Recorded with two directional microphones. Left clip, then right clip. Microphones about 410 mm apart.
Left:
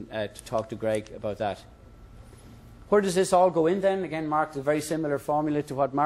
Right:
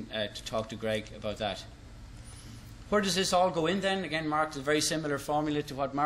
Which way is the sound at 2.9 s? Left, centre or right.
Centre.